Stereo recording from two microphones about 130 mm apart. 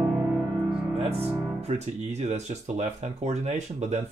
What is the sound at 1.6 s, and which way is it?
Speech, 60° right (ahead or behind).